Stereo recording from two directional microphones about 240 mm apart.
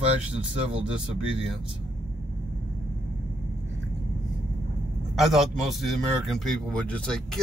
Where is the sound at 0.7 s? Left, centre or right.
Centre.